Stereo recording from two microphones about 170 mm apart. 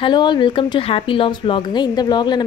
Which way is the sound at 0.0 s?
25° left (ahead or behind).